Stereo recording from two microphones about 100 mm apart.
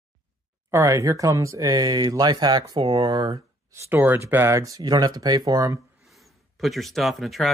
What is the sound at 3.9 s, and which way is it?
Speech, 20° right (ahead or behind).